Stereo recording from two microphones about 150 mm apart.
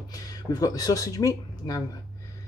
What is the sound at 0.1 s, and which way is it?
Speech, 25° left (ahead or behind).